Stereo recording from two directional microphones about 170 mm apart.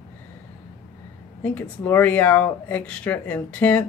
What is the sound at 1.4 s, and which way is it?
Speech, 10° left (ahead or behind).